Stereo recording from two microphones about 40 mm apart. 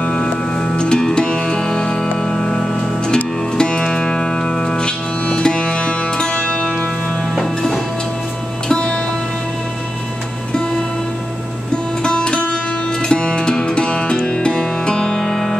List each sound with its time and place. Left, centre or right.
0.0 s music: left
7.3 s music: centre
8.6 s music: left
12.0 s music: left